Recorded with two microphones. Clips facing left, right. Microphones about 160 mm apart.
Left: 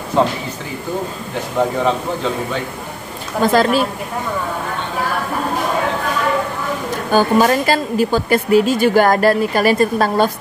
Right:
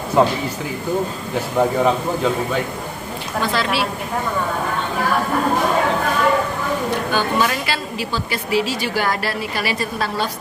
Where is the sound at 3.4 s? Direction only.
45° left (ahead or behind).